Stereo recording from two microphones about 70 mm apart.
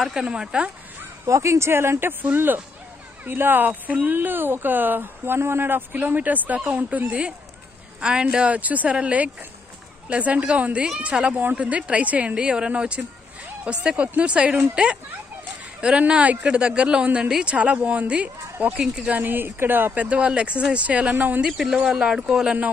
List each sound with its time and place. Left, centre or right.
0.0 s speech: centre
1.2 s speech: right; by 19.1 s centre
19.1 s speech: right
21.5 s speech: centre